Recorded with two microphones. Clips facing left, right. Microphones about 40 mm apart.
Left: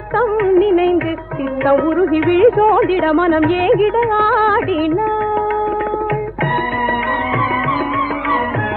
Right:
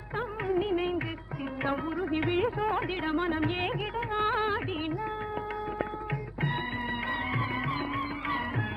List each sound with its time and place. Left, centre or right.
0.2 s music of bollywood: left
1.7 s music: left